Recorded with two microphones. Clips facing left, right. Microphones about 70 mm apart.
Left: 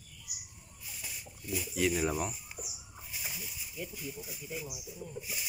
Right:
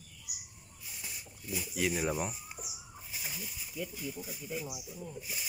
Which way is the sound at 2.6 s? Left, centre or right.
Centre.